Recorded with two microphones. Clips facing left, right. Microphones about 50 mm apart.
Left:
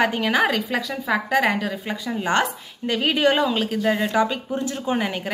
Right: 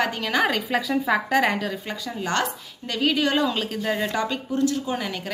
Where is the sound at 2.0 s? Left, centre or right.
Centre.